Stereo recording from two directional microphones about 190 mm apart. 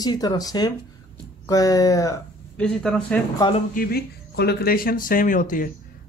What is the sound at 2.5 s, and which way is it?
Speech, 5° left (ahead or behind).